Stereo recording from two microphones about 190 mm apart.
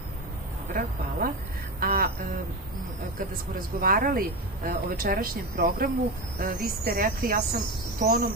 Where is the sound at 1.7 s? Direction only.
50° right (ahead or behind).